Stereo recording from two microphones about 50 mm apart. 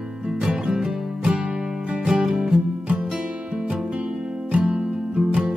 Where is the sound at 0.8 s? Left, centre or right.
Centre.